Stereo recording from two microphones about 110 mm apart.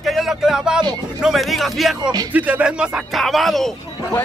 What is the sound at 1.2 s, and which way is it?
Speech, centre (ahead or behind).